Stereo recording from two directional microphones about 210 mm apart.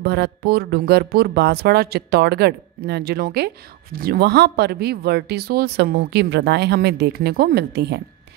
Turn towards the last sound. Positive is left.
turn(degrees=-50)  # may be behind; listen again after turning